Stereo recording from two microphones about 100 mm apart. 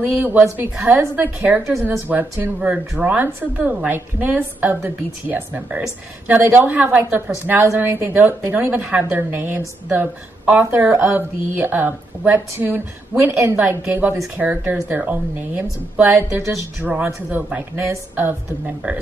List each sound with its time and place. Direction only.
0.2 s a woman's voice: 20° right (ahead or behind)